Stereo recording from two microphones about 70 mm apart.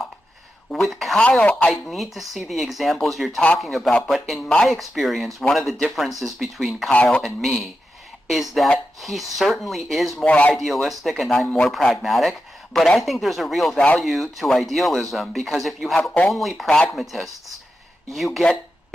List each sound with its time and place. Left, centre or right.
0.7 s speech: centre
6.9 s speech: centre
10.2 s speech: centre
10.5 s speech: centre